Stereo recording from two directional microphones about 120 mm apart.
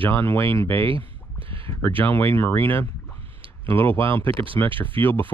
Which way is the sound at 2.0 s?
15° left (ahead or behind).